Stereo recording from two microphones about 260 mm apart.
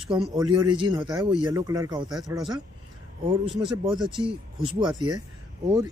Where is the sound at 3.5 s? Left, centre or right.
Centre.